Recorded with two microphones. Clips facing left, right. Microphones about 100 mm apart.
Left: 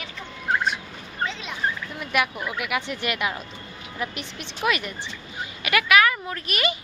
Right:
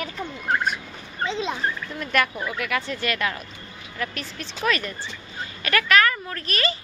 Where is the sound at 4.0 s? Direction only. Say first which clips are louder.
Right 1 dB; 20° left (ahead or behind).